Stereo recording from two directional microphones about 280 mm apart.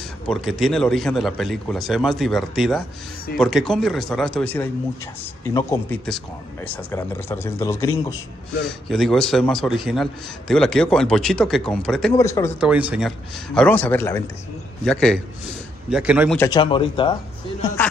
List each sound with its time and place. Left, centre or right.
0.3 s speech: centre
12.5 s speech: centre
13.6 s speech: centre
16.3 s speech: centre